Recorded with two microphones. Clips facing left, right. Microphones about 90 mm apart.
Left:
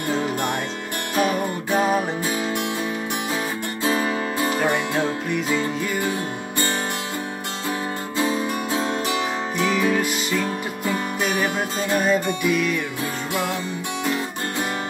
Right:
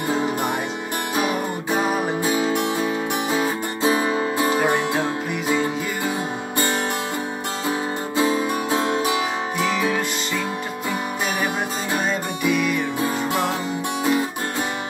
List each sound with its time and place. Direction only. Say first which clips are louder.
0.1 s music: right 1 dB; 5° right (ahead or behind)
2.2 s music: right 4 dB; 20° right (ahead or behind)
4.9 s music: left 1 dB; 5° right (ahead or behind)
8.2 s music: right 2 dB; 15° right (ahead or behind)
9.6 s music: left 2 dB; centre (ahead or behind)
12.1 s music: left 2 dB; centre (ahead or behind)